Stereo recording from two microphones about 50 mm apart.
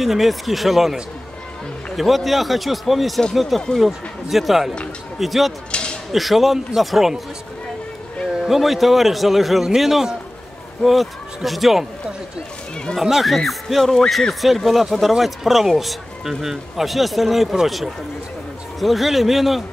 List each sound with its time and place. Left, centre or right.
0.0 s speech: centre
2.0 s speech: centre
5.7 s a sound: centre
6.1 s speech: centre
8.5 s speech: centre
13.0 s speech: centre